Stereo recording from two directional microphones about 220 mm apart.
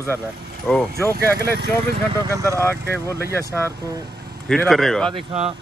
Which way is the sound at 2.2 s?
15° right (ahead or behind).